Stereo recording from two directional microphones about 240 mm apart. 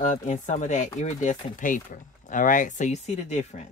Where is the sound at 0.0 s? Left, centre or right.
Left.